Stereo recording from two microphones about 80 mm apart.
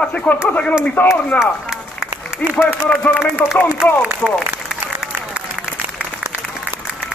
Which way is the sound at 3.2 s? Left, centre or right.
Centre.